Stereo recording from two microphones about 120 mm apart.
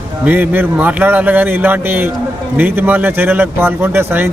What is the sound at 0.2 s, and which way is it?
A man's voice, 15° right (ahead or behind).